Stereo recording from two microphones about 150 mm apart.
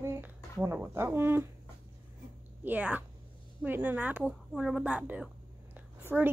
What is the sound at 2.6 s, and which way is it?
A woman's voice, 10° right (ahead or behind).